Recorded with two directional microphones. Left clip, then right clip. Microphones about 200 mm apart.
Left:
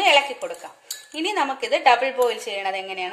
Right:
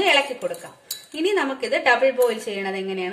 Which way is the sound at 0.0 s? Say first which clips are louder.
Left 1 dB; 40° left (ahead or behind).